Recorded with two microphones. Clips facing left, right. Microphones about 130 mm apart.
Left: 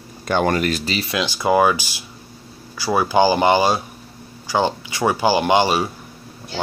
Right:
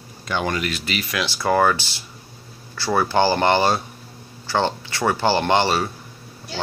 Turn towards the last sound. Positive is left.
turn(degrees=15)  # may be behind; listen again after turning